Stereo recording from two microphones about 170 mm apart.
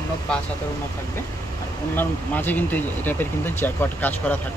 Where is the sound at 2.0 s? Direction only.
10° left (ahead or behind).